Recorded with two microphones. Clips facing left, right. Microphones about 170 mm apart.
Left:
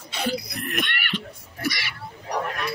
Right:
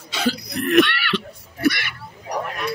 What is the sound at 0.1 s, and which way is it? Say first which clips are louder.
Throat clearing: right 4 dB; 90° right.